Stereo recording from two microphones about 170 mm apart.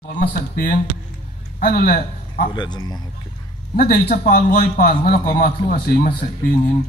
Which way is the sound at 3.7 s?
65° left (ahead or behind).